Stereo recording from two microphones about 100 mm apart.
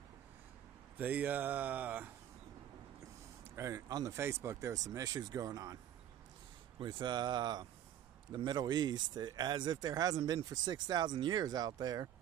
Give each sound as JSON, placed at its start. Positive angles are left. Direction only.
{"t": 0.9, "sound": "speech", "side_deg": -15}
{"t": 3.5, "sound": "speech", "side_deg": -30}
{"t": 6.8, "sound": "speech", "side_deg": -50}